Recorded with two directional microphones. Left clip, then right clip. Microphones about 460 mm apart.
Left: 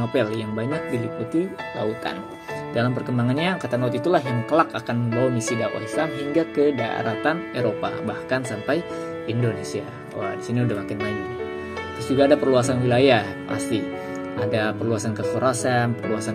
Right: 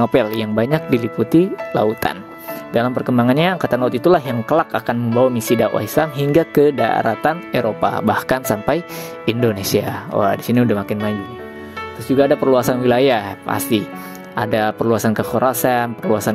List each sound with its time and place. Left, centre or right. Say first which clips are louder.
0.0 s speech: right 7 dB; right
12.2 s speech: right 3 dB; centre